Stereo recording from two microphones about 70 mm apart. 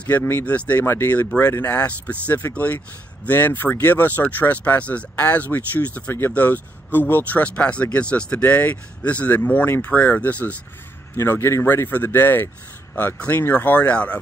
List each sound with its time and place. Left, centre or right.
0.2 s speech: left
0.5 s speech: left
0.8 s speech: left
1.6 s speech: left
11.1 s speech: left
13.5 s speech: left